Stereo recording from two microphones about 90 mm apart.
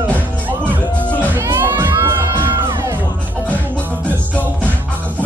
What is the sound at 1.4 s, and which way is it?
Music, 25° right (ahead or behind).